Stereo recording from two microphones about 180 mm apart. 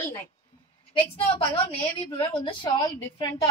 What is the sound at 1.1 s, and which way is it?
A woman's voice, 30° left (ahead or behind).